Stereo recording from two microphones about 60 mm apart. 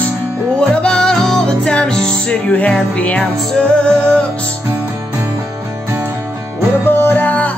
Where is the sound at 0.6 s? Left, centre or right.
Centre.